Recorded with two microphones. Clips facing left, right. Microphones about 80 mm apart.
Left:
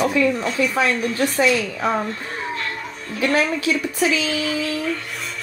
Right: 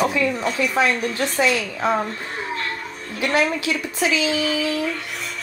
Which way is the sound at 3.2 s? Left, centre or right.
Centre.